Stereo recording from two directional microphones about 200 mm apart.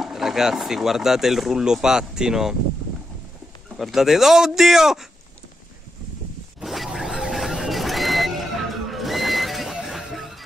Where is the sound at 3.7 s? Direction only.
Centre (ahead or behind).